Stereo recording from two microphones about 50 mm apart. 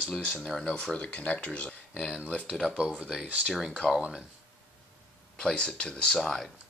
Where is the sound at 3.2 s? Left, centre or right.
Right.